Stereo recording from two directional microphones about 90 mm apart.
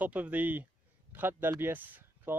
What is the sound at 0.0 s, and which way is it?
Speech, 15° right (ahead or behind).